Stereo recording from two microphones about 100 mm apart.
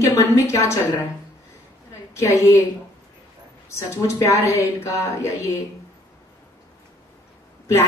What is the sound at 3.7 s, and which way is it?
Speech, 30° left (ahead or behind).